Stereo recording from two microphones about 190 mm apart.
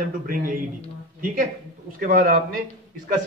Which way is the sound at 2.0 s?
50° right (ahead or behind).